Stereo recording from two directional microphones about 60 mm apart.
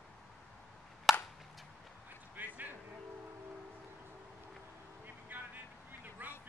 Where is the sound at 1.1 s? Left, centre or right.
Centre.